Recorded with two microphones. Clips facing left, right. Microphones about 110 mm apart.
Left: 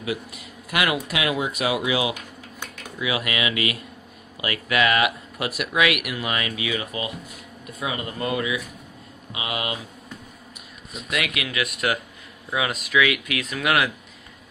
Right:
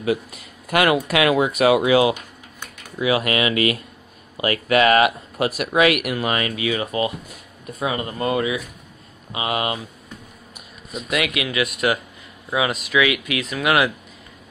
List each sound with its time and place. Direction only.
0.0 s speech: 45° right (ahead or behind)
1.0 s speech: 60° right (ahead or behind); by 9.8 s 35° right (ahead or behind)
11.1 s speech: 25° right (ahead or behind)
11.5 s speech: 10° right (ahead or behind)